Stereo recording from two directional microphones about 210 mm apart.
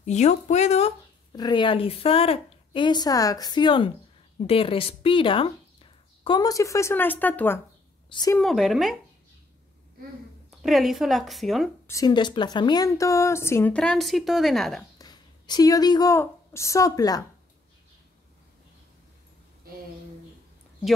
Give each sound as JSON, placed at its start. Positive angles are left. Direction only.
{"t": 0.0, "sound": "a woman's voice", "side_deg": 35}
{"t": 8.4, "sound": "speech", "side_deg": 0}
{"t": 10.5, "sound": "speech", "side_deg": 0}
{"t": 11.9, "sound": "a woman's voice", "side_deg": 20}
{"t": 15.0, "sound": "a woman's voice", "side_deg": 20}